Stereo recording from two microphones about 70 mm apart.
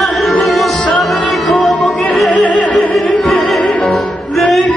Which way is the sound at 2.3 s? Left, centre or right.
Centre.